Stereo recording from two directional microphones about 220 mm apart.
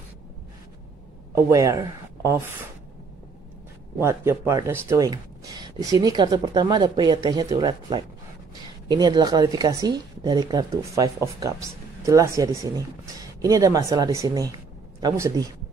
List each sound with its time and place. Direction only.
1.3 s speech: 15° right (ahead or behind)
4.0 s speech: 10° right (ahead or behind)